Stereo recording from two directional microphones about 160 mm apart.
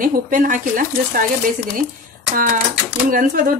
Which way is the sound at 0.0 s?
55° right (ahead or behind).